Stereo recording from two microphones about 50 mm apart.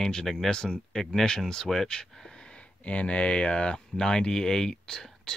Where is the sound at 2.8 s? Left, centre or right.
Left.